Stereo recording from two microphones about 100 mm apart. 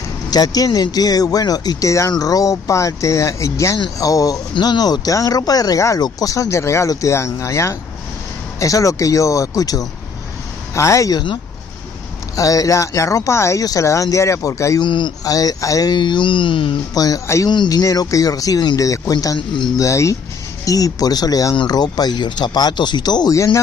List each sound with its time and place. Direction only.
0.3 s speech: 40° left (ahead or behind)
12.4 s speech: 35° left (ahead or behind)
14.8 s speech: 50° left (ahead or behind)
16.9 s speech: 40° left (ahead or behind)
17.5 s speech: 45° left (ahead or behind)